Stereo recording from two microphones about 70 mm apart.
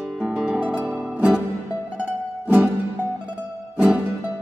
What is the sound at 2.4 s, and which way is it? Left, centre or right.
Music, right.